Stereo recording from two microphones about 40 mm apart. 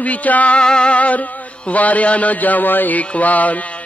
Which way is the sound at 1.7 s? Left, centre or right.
Left.